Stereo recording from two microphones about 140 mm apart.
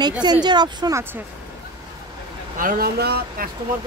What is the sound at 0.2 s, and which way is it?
Speech, 30° right (ahead or behind).